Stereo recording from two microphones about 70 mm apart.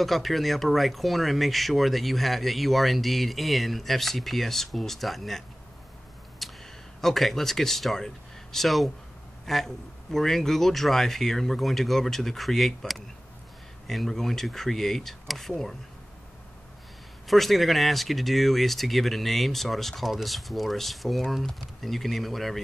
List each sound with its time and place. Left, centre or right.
0.0 s speech: centre
6.4 s a sound: centre
7.0 s speech: centre
17.3 s speech: centre